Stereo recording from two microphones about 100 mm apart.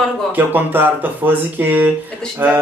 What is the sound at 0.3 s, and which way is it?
Speech, 20° right (ahead or behind).